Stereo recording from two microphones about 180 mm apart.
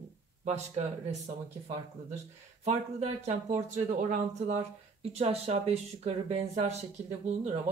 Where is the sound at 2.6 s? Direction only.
40° right (ahead or behind).